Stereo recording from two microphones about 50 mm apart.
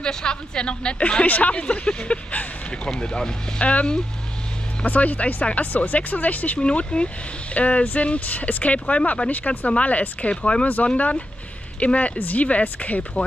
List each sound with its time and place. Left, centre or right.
0.0 s a woman's voice: centre